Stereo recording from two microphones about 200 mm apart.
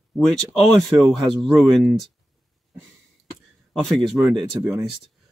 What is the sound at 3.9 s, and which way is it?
Speech, centre (ahead or behind).